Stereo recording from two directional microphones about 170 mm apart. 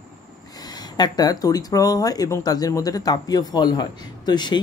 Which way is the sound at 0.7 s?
25° left (ahead or behind).